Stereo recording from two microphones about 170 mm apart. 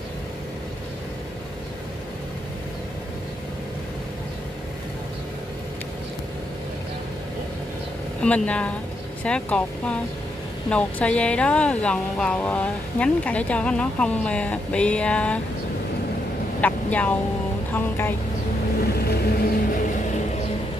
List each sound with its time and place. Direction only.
8.2 s speech: 5° left (ahead or behind)
16.6 s speech: 10° left (ahead or behind)
18.9 s vehicle: 65° left (ahead or behind)